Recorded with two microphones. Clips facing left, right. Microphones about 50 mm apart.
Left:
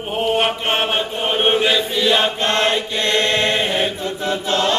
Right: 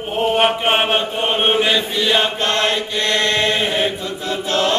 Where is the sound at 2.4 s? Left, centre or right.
Left.